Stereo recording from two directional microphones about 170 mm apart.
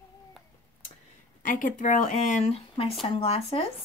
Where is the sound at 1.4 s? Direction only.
50° left (ahead or behind); by 3.6 s 35° left (ahead or behind).